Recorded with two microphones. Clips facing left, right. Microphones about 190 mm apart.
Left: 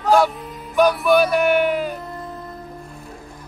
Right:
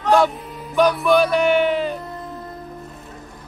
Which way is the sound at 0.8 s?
5° left (ahead or behind).